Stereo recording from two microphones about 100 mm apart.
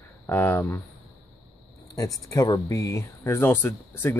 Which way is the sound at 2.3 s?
35° left (ahead or behind).